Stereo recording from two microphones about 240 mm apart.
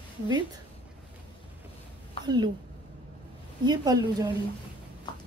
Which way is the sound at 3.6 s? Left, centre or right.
Centre.